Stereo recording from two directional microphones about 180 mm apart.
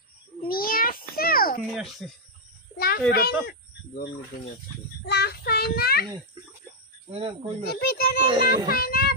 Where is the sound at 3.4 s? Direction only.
60° left (ahead or behind).